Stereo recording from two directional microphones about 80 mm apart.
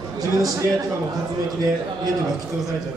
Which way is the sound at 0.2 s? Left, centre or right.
Right.